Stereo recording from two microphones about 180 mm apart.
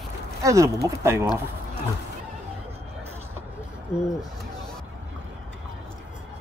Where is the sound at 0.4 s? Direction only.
15° right (ahead or behind).